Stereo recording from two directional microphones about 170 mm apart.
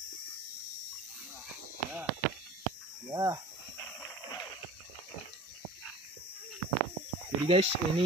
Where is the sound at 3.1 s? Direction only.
20° right (ahead or behind).